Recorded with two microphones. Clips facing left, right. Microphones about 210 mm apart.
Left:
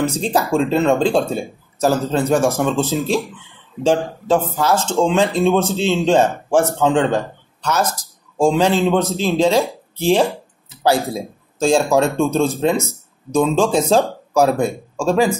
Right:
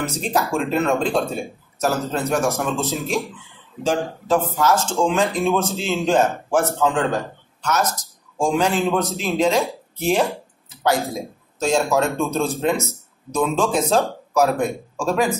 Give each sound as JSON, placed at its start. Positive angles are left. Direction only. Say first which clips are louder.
{"t": 0.0, "sound": "a man's voice", "louder": "left 4 dB", "side_deg": 30}